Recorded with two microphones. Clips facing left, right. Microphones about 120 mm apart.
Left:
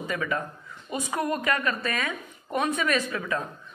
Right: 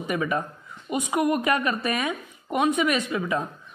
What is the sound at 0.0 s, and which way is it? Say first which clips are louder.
A woman's voice: right 3 dB; 20° right (ahead or behind).